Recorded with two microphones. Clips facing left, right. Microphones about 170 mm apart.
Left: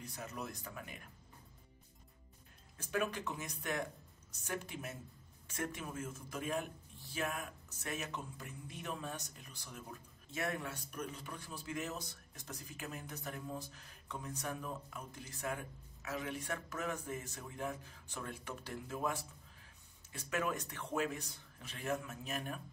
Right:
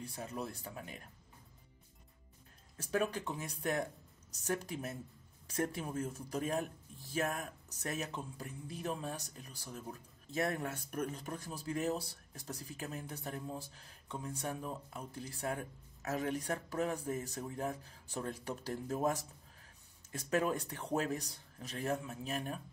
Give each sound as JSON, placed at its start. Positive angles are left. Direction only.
{"t": 0.0, "sound": "speech", "side_deg": -30}
{"t": 2.8, "sound": "speech", "side_deg": -35}
{"t": 10.7, "sound": "speech", "side_deg": -55}